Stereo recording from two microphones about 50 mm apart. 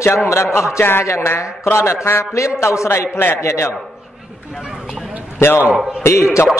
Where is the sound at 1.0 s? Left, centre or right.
Left.